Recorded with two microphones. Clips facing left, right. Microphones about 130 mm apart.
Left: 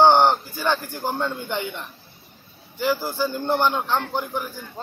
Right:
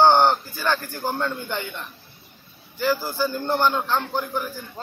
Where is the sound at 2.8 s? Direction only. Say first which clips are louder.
Even; 25° left (ahead or behind).